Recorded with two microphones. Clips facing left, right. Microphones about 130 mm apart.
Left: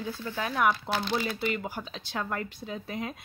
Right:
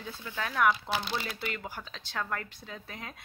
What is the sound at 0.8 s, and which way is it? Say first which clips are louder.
Speech: left 3 dB; centre (ahead or behind).